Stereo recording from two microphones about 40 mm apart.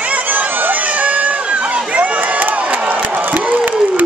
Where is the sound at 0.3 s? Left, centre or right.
Right.